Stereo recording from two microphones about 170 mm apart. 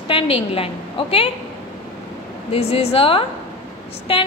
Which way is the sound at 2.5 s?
35° left (ahead or behind).